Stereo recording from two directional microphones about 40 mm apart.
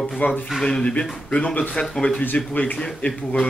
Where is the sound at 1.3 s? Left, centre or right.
Left.